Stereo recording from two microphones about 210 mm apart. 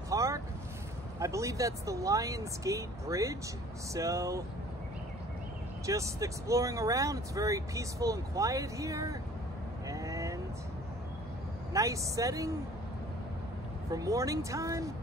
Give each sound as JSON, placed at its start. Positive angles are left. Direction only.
{"t": 0.1, "sound": "boat", "side_deg": -15}
{"t": 1.2, "sound": "speech", "side_deg": -15}
{"t": 5.9, "sound": "speech", "side_deg": -15}
{"t": 9.8, "sound": "vehicle", "side_deg": -15}
{"t": 11.7, "sound": "speech", "side_deg": -15}
{"t": 13.8, "sound": "speech", "side_deg": -15}